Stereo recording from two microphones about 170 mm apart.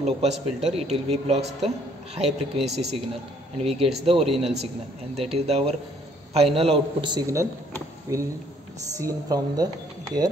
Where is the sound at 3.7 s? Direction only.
35° right (ahead or behind).